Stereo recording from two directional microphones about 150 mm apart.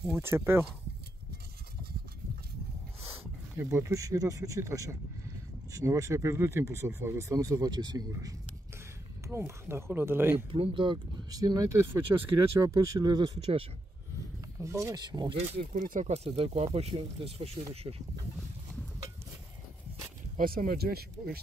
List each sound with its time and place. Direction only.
0.0 s speech: 15° right (ahead or behind)
3.5 s speech: 20° right (ahead or behind)
10.5 s speech: 35° right (ahead or behind)
14.6 s speech: 20° right (ahead or behind)
15.3 s speech: 50° right (ahead or behind)
16.3 s speech: 40° right (ahead or behind)
20.3 s speech: 75° right (ahead or behind)